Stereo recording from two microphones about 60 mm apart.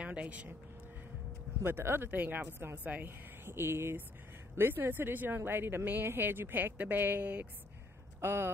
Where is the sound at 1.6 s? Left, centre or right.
Right.